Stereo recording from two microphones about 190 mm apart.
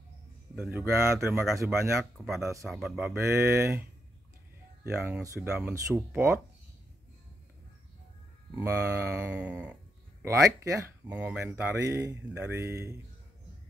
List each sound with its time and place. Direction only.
0.6 s speech: 10° right (ahead or behind)
2.1 s speech: centre (ahead or behind)
3.2 s speech: 10° right (ahead or behind)
4.8 s speech: 5° right (ahead or behind)
5.2 s speech: 15° right (ahead or behind)
5.5 s speech: 5° right (ahead or behind)
8.5 s speech: 15° right (ahead or behind)
10.2 s speech: 15° right (ahead or behind)